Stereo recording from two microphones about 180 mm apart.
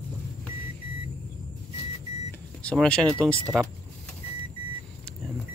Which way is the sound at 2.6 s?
5° left (ahead or behind).